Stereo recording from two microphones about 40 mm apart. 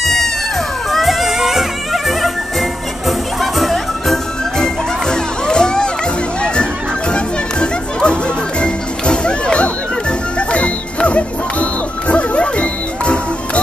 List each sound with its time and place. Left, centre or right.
0.0 s cat: centre
0.9 s music: centre; by 13.2 s left